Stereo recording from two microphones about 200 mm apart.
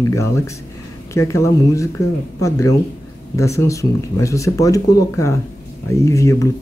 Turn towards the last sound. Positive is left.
turn(degrees=15)  # may be behind; listen again after turning